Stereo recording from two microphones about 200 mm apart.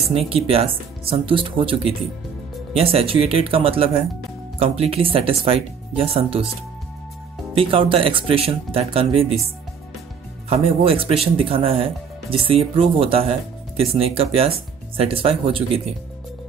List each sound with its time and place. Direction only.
0.0 s speech: 30° right (ahead or behind)
7.5 s speech: 25° right (ahead or behind)
10.5 s speech: 30° right (ahead or behind)